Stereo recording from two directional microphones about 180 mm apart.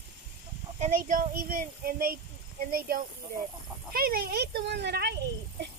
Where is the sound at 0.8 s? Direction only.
45° right (ahead or behind).